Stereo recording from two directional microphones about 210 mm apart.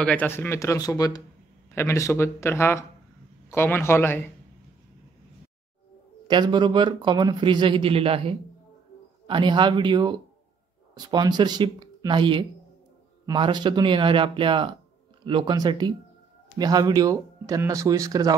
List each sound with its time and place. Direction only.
0.0 s speech: 5° left (ahead or behind)
6.2 s speech: 20° right (ahead or behind)